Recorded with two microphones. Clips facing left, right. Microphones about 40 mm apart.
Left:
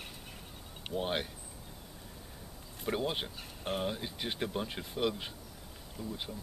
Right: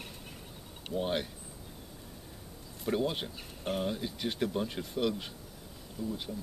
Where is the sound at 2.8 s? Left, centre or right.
Centre.